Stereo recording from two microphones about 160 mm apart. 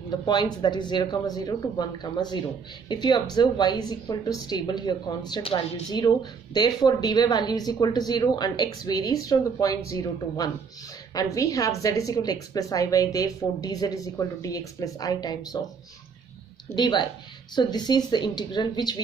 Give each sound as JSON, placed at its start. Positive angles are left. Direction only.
{"t": 0.3, "sound": "a woman's voice", "side_deg": 25}
{"t": 16.7, "sound": "a woman's voice", "side_deg": 30}